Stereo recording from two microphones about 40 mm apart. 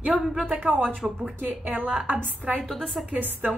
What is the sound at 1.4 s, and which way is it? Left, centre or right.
A woman's voice, right.